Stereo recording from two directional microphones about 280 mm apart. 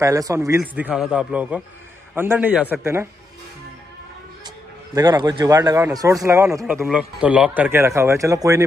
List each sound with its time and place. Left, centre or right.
0.0 s a man's voice: centre
4.9 s speech: centre